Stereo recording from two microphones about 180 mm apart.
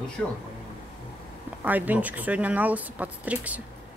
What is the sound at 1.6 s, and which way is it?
Speech, 10° right (ahead or behind).